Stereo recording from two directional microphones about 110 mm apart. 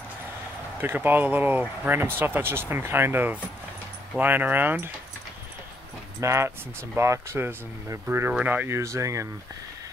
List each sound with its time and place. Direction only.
0.7 s speech: 20° right (ahead or behind)
6.2 s speech: 25° right (ahead or behind)